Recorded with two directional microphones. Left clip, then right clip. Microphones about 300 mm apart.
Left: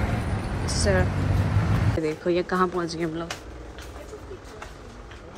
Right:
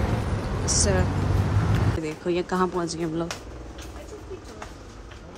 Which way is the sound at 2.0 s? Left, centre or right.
Centre.